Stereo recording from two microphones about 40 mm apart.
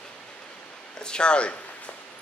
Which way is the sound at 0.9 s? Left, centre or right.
Left.